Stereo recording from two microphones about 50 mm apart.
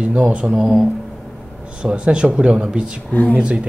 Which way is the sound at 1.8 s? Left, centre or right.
Centre.